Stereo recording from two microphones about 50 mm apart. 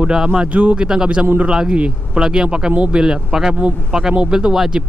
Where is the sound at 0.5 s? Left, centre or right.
Right.